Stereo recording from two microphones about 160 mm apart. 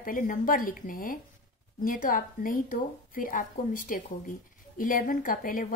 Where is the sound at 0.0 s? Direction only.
60° left (ahead or behind).